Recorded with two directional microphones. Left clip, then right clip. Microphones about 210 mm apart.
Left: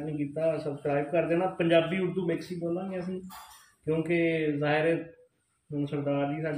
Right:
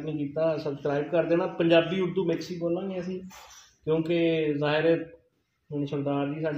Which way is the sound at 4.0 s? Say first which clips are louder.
Right 1 dB; 15° right (ahead or behind).